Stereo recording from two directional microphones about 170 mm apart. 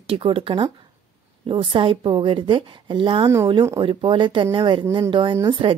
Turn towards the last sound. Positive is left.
turn(degrees=-35)  # may be behind; listen again after turning